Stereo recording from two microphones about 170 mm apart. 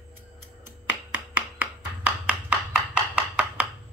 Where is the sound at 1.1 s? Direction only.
10° right (ahead or behind).